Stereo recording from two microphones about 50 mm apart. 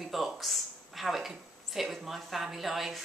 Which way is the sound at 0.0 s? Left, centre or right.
Centre.